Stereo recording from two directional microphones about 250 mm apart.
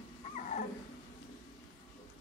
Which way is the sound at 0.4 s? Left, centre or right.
Left.